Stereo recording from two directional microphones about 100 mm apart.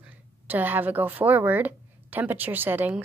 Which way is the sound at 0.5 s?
20° right (ahead or behind).